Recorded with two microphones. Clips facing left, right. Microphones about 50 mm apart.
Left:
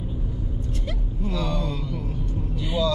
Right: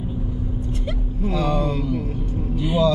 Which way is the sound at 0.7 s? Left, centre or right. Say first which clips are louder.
Right 4 dB; centre.